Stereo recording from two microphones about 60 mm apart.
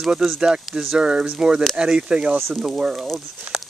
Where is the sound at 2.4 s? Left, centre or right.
Centre.